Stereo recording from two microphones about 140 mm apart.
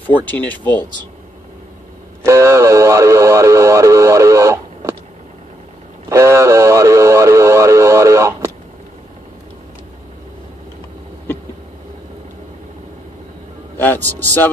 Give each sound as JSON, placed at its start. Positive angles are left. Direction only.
{"t": 0.0, "sound": "speech", "side_deg": 10}
{"t": 2.2, "sound": "speech", "side_deg": -20}
{"t": 6.0, "sound": "radio", "side_deg": -20}
{"t": 13.7, "sound": "speech", "side_deg": 15}